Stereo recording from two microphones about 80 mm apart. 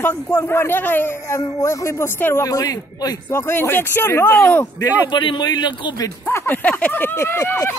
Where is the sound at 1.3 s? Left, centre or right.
Left.